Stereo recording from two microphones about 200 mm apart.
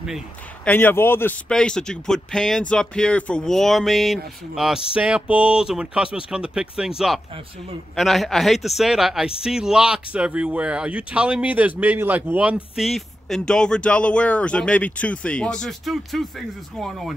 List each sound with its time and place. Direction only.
0.7 s speech: 10° left (ahead or behind)
7.9 s speech: centre (ahead or behind)